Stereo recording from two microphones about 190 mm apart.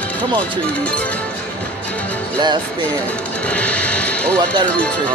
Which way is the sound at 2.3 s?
25° right (ahead or behind).